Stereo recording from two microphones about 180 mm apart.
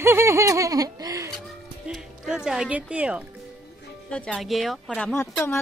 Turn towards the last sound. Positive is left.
turn(degrees=15)  # may be behind; listen again after turning